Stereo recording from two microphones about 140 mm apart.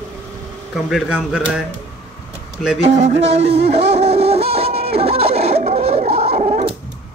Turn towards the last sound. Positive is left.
turn(degrees=-50)  # may be behind; listen again after turning